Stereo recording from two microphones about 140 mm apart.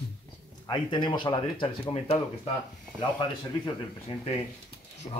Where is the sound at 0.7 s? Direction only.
35° left (ahead or behind).